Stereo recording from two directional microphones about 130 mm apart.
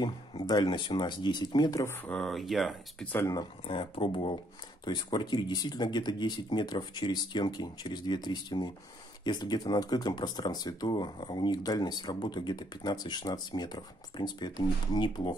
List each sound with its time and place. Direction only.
0.0 s speech: 35° left (ahead or behind)
2.0 s speech: 5° left (ahead or behind)
3.1 s speech: 15° left (ahead or behind)
3.3 s speech: 40° left (ahead or behind)